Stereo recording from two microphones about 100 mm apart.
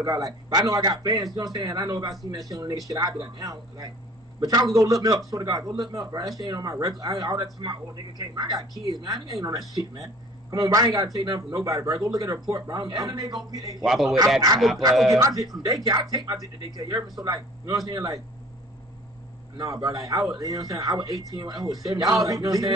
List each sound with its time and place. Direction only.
0.0 s speech: 40° right (ahead or behind)
13.8 s speech: centre (ahead or behind)
15.0 s speech: 35° right (ahead or behind)
19.5 s speech: 35° right (ahead or behind)